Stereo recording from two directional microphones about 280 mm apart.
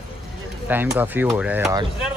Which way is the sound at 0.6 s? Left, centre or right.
Centre.